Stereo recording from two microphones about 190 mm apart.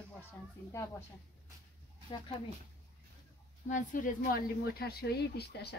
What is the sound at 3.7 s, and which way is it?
A woman's voice, 40° left (ahead or behind).